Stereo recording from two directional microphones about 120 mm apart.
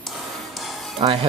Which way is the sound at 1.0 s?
50° right (ahead or behind).